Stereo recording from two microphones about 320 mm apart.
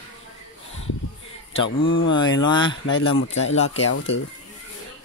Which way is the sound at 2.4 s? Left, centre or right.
Centre.